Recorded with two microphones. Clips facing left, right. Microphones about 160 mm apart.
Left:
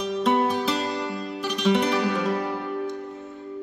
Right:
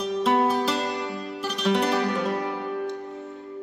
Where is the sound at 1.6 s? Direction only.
Centre (ahead or behind).